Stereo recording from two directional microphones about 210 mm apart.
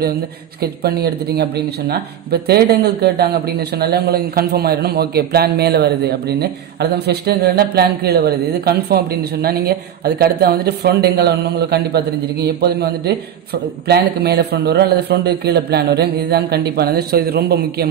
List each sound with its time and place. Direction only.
0.6 s speech: 50° right (ahead or behind)